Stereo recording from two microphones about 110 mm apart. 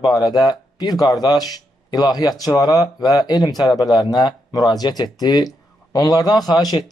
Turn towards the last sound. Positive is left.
turn(degrees=35)  # may be behind; listen again after turning